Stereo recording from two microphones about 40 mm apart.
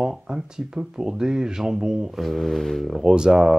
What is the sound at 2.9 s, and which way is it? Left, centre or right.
Speech, centre.